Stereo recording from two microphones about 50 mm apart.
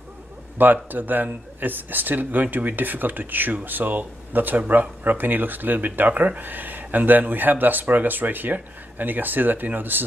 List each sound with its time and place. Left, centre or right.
0.6 s speech: right